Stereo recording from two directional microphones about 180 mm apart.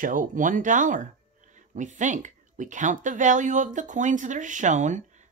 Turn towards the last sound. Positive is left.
turn(degrees=-40)  # may be behind; listen again after turning